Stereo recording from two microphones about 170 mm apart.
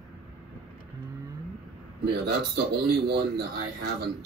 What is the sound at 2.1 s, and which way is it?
Speech, 75° right (ahead or behind).